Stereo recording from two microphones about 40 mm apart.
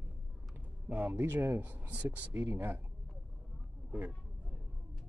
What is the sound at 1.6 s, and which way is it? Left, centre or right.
Speech, right.